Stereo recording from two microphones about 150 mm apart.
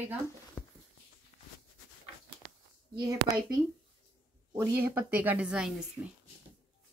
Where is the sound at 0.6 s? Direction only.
20° left (ahead or behind).